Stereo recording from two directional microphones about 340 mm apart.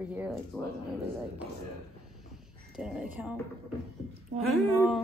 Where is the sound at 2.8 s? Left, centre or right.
Centre.